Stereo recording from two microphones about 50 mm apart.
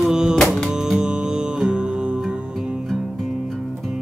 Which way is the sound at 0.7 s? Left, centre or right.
Centre.